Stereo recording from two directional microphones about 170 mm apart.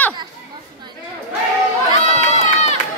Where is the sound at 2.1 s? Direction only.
40° left (ahead or behind).